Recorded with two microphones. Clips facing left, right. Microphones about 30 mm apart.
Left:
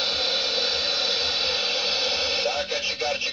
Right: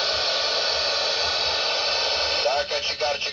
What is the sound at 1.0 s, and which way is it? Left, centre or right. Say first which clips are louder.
Hair dryer: right 1 dB; right.